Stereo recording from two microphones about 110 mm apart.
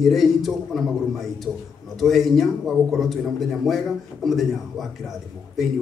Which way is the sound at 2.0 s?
Centre (ahead or behind).